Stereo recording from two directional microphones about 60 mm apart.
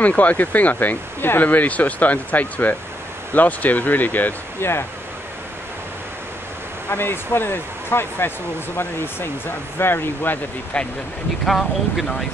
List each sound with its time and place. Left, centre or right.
0.0 s speech: left
4.6 s speech: left
6.9 s speech: left
11.4 s speech: centre